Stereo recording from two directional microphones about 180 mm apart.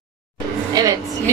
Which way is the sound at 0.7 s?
20° right (ahead or behind).